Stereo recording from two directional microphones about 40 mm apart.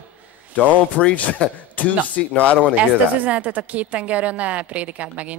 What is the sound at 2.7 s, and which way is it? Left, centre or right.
A woman's voice, right.